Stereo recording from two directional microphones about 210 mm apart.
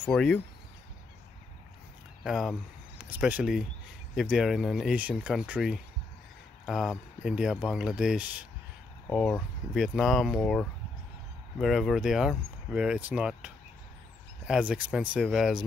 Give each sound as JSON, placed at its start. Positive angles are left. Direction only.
{"t": 0.0, "sound": "speech", "side_deg": 5}
{"t": 2.2, "sound": "speech", "side_deg": 0}